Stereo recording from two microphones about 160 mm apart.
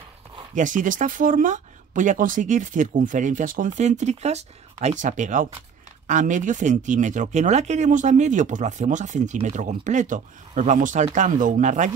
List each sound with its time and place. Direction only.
0.6 s speech: 55° right (ahead or behind)